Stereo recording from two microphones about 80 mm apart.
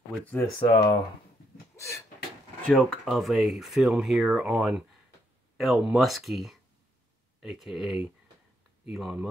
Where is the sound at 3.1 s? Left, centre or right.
Centre.